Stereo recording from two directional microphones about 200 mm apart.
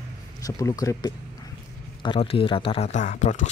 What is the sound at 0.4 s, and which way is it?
Speech, 15° left (ahead or behind).